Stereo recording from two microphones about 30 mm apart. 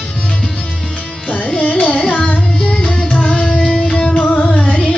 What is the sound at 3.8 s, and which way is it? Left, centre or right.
Music, left.